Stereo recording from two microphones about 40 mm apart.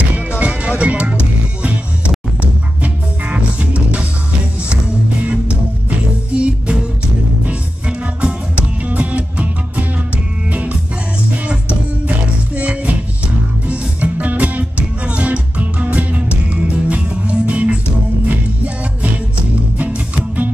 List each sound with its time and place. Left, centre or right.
0.3 s music: right
5.2 s music: right
8.2 s music: right
8.8 s music: right
10.5 s music: right
12.5 s music: right
19.8 s music: right